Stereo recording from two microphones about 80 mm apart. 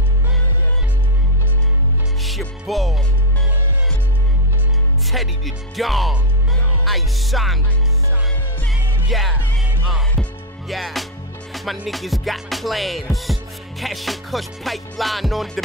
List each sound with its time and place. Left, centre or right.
2.2 s music: centre
5.1 s speech: centre
9.1 s speech: centre
10.2 s music: centre
10.7 s speech: centre
11.5 s music: centre